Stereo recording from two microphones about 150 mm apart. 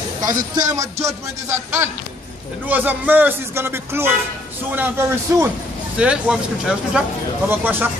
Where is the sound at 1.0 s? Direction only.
15° right (ahead or behind).